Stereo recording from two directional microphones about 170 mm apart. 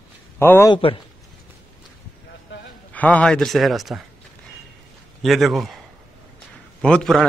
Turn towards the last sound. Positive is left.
turn(degrees=5)  # may be behind; listen again after turning